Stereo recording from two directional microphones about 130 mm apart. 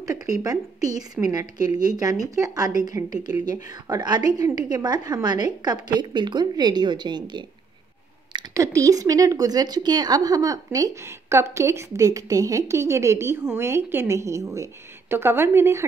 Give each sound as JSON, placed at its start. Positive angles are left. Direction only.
{"t": 0.0, "sound": "a woman's voice", "side_deg": -25}
{"t": 8.3, "sound": "a sound", "side_deg": -35}
{"t": 8.7, "sound": "a woman's voice", "side_deg": -25}